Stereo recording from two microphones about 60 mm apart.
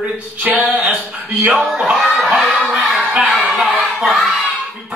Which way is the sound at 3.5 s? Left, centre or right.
Centre.